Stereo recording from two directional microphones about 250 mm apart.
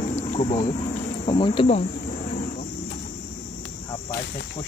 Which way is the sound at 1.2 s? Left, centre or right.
Left.